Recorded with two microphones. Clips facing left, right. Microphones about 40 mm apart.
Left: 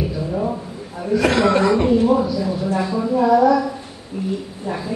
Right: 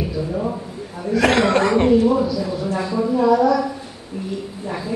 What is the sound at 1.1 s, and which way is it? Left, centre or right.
Speech, right.